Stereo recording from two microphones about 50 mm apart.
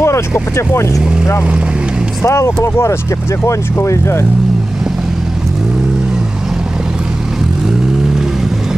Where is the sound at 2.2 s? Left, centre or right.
Left.